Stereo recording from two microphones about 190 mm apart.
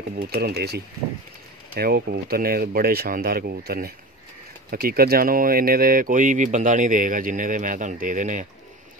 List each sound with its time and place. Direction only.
0.2 s speech: 55° right (ahead or behind); by 8.5 s 40° right (ahead or behind)